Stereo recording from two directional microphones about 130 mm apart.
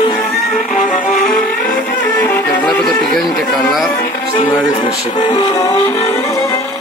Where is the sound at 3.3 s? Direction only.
5° left (ahead or behind).